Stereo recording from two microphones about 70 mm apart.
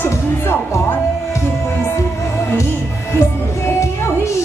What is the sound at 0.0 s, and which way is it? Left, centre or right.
Music, left.